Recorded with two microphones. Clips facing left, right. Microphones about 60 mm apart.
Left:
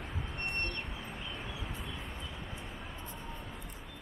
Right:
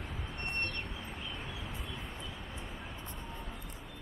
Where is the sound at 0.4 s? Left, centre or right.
Left.